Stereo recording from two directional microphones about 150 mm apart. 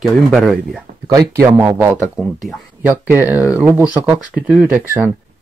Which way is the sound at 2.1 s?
5° right (ahead or behind).